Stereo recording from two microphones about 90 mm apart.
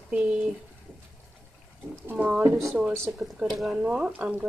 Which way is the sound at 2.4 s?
30° right (ahead or behind).